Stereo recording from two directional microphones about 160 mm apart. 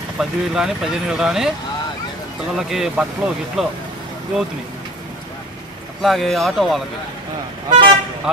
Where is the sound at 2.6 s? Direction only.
Centre (ahead or behind).